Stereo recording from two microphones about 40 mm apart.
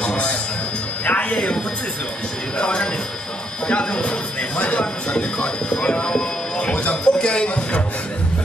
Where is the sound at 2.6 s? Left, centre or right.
Left.